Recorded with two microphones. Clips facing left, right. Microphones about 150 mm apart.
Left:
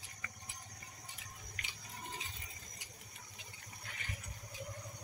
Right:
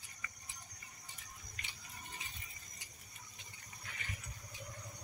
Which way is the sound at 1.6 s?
90° left.